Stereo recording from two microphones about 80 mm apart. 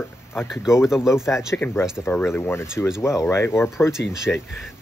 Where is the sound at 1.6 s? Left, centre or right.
Left.